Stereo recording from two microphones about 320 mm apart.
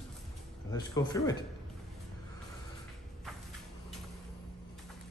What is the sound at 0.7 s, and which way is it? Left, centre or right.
Speech, centre.